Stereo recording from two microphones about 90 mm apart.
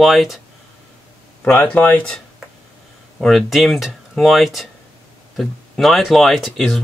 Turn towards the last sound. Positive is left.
turn(degrees=0)  # may be behind; listen again after turning